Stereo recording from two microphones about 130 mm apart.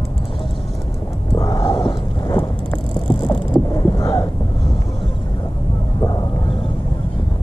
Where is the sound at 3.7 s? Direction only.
25° left (ahead or behind).